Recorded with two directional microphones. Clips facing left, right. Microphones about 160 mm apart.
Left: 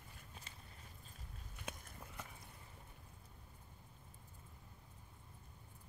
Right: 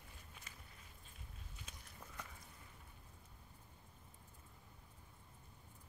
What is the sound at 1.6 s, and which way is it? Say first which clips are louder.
Biting: left 12 dB; 55° left (ahead or behind).